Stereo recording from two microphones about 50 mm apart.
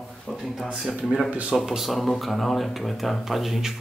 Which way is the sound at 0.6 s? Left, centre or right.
Centre.